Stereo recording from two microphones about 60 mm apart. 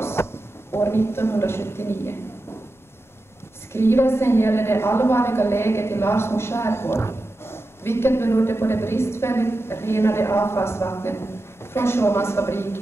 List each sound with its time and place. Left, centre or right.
0.0 s a man's voice: left
3.7 s a woman's voice: left